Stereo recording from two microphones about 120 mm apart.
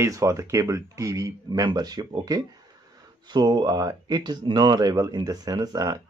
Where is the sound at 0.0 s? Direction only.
25° right (ahead or behind).